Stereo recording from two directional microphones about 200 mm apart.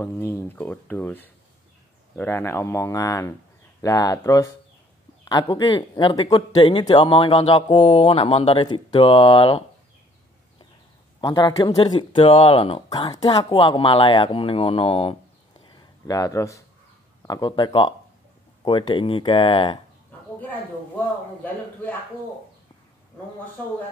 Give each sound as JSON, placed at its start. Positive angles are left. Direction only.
{"t": 0.0, "sound": "speech", "side_deg": 10}
{"t": 11.1, "sound": "speech", "side_deg": 20}
{"t": 15.7, "sound": "a sound", "side_deg": 15}
{"t": 17.2, "sound": "speech", "side_deg": 20}